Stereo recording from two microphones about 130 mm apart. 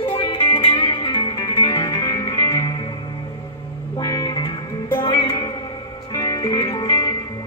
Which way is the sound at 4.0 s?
30° left (ahead or behind).